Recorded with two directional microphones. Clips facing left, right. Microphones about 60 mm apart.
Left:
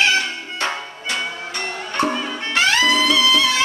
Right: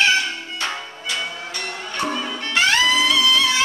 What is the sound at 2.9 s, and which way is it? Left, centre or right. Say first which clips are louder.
Music: left 1 dB; centre.